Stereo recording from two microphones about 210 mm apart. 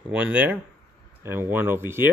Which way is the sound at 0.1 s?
5° right (ahead or behind).